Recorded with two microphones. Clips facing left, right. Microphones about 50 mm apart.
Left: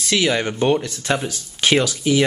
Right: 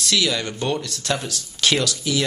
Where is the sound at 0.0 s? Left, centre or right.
Left.